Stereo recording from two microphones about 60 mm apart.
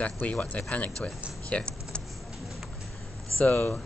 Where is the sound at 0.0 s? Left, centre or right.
Left.